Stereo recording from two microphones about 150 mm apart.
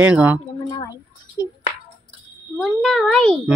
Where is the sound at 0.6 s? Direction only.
30° left (ahead or behind).